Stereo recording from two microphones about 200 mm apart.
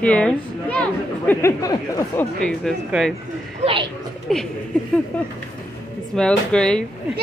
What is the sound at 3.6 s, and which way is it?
Speech, 30° right (ahead or behind).